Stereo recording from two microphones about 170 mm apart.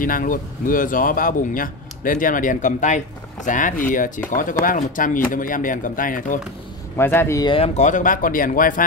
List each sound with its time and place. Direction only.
0.0 s a man's voice: 55° left (ahead or behind)
7.0 s speech: 15° left (ahead or behind)
7.5 s a man's voice: 40° left (ahead or behind)